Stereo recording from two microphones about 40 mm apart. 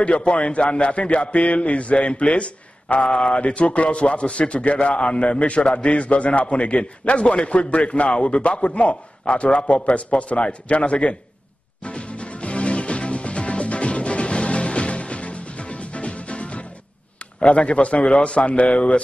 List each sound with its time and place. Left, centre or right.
0.0 s a man's voice: left
11.8 s music: left
17.4 s a man's voice: left